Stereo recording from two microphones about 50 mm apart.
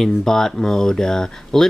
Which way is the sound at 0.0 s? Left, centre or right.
Centre.